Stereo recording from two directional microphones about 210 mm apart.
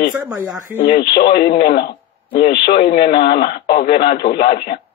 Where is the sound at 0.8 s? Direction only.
50° left (ahead or behind).